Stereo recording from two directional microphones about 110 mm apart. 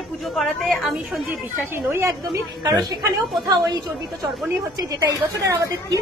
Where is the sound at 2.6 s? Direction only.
35° right (ahead or behind).